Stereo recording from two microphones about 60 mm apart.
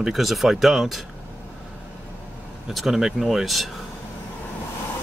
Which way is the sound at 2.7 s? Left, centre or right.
Centre.